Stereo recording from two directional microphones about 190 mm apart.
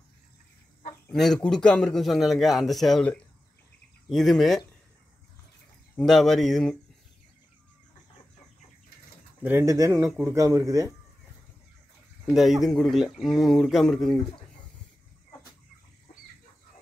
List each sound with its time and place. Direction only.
1.1 s a man's voice: centre (ahead or behind)
5.9 s a man's voice: centre (ahead or behind)
9.4 s a man's voice: 10° right (ahead or behind)
12.3 s a man's voice: centre (ahead or behind)